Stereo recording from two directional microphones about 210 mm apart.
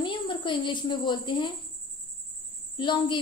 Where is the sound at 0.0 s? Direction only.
20° left (ahead or behind).